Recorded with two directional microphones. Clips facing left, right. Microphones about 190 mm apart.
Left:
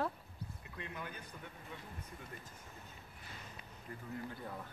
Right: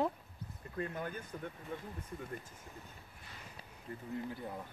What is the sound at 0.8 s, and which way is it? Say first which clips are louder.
Speech: right 8 dB; 45° right (ahead or behind).